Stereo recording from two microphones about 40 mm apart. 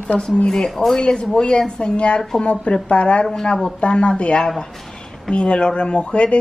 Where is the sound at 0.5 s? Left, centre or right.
Centre.